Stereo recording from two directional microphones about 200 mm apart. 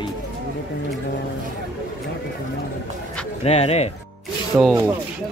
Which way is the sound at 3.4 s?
30° left (ahead or behind).